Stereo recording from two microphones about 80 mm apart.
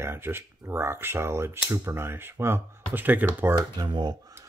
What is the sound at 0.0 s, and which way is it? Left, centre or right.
Speech, right.